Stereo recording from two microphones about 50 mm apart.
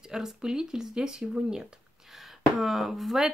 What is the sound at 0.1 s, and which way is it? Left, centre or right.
Speech, centre.